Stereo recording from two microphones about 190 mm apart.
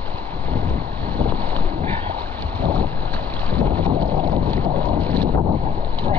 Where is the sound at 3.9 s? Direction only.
25° right (ahead or behind).